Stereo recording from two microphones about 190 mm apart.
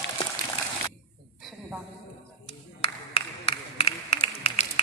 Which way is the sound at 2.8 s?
30° left (ahead or behind).